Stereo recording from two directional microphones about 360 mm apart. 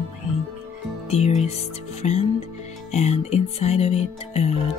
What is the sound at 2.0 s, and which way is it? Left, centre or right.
Music, centre.